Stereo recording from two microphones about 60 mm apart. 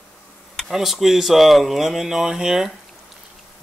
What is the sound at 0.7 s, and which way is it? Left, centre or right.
Speech, centre.